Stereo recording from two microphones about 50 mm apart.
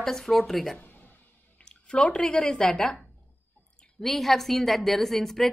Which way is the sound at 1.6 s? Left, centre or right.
Centre.